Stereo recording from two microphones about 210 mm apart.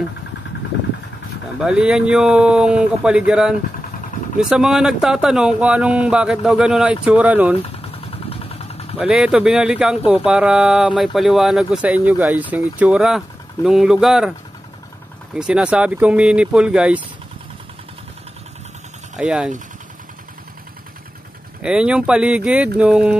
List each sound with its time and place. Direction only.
1.6 s speech: 5° right (ahead or behind)
7.9 s vehicle: 30° left (ahead or behind)
8.9 s speech: 5° right (ahead or behind)
15.3 s speech: 5° right (ahead or behind)
19.1 s speech: 5° right (ahead or behind)
21.5 s speech: 5° right (ahead or behind)